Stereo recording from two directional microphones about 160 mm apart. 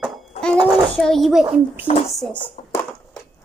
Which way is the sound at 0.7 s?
5° left (ahead or behind).